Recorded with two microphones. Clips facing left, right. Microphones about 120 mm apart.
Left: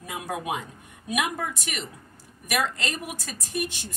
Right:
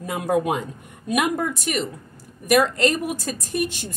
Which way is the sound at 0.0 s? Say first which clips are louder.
Right 10 dB; 50° right (ahead or behind).